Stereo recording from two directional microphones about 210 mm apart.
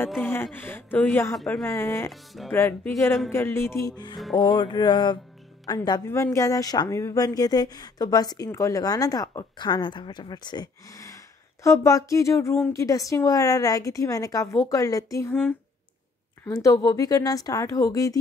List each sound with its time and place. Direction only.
0.2 s a woman's voice: 10° left (ahead or behind)
2.0 s speech: centre (ahead or behind)
2.5 s a woman's voice: 10° left (ahead or behind)
4.4 s music: 20° left (ahead or behind)
5.7 s a woman's voice: 20° left (ahead or behind)